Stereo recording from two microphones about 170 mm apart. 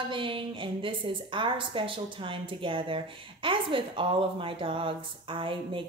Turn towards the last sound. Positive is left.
turn(degrees=-30)  # may be behind; listen again after turning